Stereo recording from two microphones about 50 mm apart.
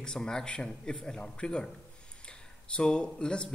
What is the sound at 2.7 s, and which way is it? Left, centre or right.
Speech, centre.